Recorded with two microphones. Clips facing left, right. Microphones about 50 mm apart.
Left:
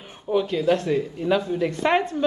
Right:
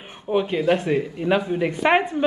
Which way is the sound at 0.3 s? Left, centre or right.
Right.